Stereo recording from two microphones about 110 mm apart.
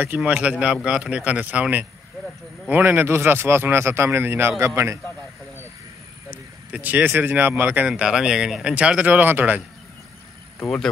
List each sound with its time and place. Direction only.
0.0 s a man's voice: 15° right (ahead or behind)
6.3 s speech: 15° right (ahead or behind)